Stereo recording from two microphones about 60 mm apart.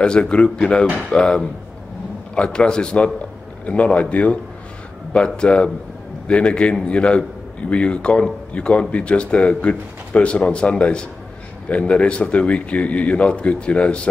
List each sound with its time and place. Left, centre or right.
0.0 s a man's voice: centre